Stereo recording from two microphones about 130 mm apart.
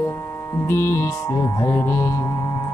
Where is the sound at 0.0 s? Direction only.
20° left (ahead or behind).